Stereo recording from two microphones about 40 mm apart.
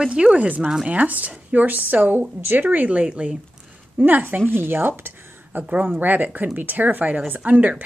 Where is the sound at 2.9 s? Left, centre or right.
Right.